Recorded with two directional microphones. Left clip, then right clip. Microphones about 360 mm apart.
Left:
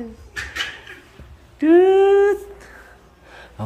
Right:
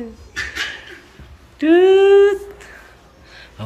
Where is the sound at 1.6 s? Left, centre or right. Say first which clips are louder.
Right 2 dB; centre.